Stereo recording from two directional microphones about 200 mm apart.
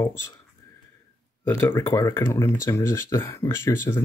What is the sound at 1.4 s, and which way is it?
Speech, 15° left (ahead or behind).